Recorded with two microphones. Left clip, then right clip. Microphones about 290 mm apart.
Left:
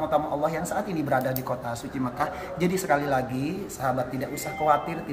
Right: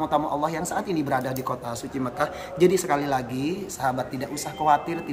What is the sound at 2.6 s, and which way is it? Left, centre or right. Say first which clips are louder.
Speech: right 4 dB; centre.